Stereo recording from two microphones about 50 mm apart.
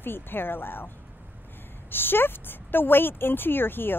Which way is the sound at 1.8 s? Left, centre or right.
Left.